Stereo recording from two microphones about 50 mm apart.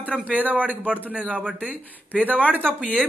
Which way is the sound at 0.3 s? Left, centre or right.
Right.